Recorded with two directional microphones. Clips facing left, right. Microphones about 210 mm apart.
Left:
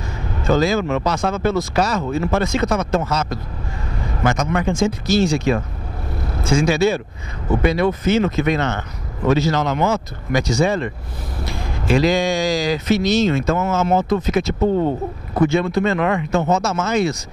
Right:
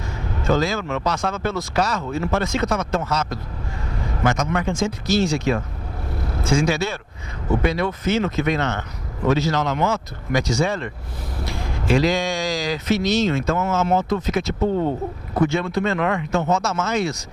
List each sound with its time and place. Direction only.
0.4 s speech: 10° left (ahead or behind)
14.6 s speech: 35° left (ahead or behind)
15.4 s speech: 10° left (ahead or behind)